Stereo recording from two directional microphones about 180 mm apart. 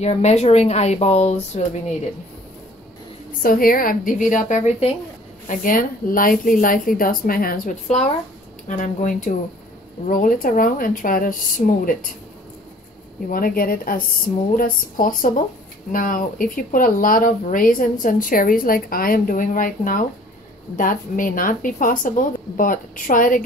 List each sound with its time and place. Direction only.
0.0 s speech: 35° left (ahead or behind)
3.4 s speech: 50° left (ahead or behind); by 4.9 s 35° left (ahead or behind)
5.5 s speech: 50° left (ahead or behind)
13.3 s speech: 50° left (ahead or behind)